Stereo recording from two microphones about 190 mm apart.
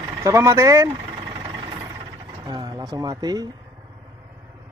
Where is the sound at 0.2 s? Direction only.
15° right (ahead or behind).